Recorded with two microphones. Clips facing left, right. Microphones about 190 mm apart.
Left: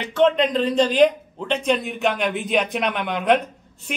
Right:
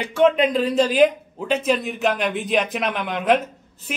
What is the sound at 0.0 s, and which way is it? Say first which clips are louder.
A man's voice: right 1 dB; 10° right (ahead or behind).